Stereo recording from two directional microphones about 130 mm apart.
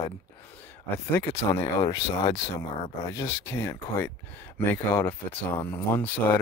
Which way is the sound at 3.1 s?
20° left (ahead or behind).